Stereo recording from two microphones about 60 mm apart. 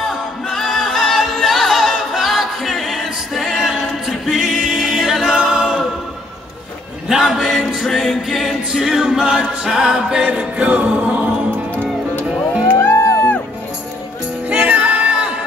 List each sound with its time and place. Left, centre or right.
0.1 s a capella: centre
4.6 s choir: centre
7.1 s music: centre; by 11.3 s right
12.9 s music: left
14.5 s music: right